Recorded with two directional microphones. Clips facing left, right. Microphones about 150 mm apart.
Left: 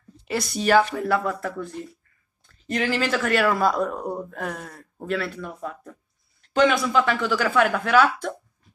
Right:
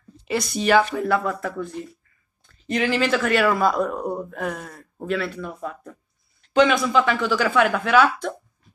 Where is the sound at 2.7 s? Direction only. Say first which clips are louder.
Right 3 dB; 40° left (ahead or behind).